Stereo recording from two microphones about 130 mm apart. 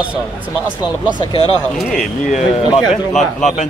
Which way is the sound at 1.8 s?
5° left (ahead or behind).